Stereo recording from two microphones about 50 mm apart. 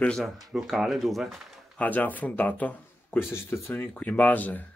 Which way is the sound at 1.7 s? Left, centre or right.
Left.